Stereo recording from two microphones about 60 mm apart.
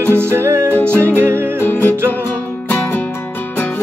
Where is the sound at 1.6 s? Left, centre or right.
Left.